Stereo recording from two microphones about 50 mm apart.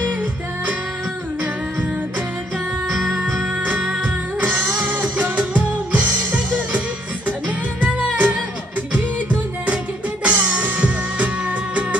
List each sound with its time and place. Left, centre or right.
0.0 s music: right
3.0 s music: centre
3.5 s music: right
10.2 s music: right